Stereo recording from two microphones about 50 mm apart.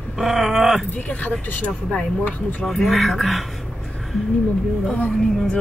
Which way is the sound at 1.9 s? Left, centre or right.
Centre.